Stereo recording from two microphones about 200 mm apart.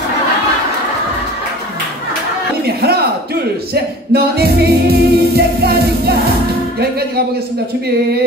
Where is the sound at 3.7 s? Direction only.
50° right (ahead or behind).